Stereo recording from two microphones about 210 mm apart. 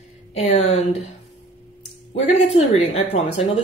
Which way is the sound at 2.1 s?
30° left (ahead or behind).